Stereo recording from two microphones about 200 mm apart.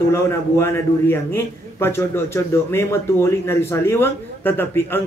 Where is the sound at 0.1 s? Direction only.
10° left (ahead or behind).